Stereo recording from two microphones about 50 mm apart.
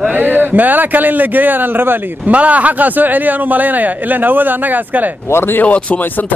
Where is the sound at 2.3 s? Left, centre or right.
Right.